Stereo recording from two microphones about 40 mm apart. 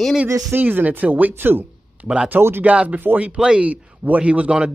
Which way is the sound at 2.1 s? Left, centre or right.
Right.